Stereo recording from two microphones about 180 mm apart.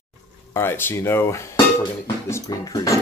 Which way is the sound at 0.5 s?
15° left (ahead or behind).